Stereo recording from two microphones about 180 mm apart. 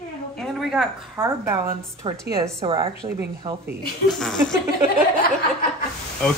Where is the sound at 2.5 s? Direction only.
30° right (ahead or behind).